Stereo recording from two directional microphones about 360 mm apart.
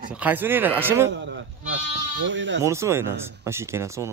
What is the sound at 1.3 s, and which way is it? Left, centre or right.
Speech, right.